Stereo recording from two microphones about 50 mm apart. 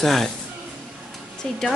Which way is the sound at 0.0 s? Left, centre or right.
Centre.